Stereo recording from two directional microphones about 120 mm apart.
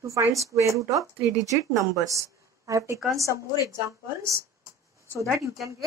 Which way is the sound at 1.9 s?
25° right (ahead or behind).